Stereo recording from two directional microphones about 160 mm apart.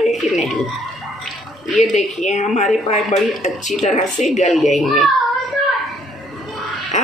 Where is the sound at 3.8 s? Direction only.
50° left (ahead or behind).